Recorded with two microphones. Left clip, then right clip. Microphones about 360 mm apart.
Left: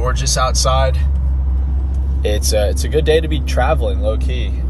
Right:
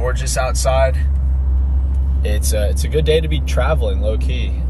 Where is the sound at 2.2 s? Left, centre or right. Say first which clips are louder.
Left 5 dB; centre.